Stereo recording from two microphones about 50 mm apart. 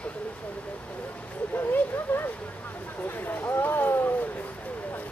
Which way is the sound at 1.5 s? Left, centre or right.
Left.